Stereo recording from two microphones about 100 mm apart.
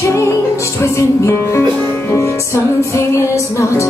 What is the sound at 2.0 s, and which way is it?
Music, 30° left (ahead or behind).